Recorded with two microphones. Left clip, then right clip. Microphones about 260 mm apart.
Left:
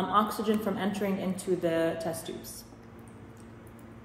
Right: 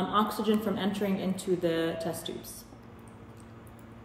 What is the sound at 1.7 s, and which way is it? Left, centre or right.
Speech, centre.